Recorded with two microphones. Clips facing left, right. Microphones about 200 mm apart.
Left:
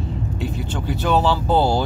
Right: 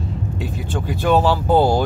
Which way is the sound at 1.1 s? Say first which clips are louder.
Right 3 dB; 15° right (ahead or behind).